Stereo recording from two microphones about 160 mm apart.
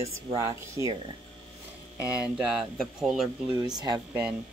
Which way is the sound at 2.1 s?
5° right (ahead or behind).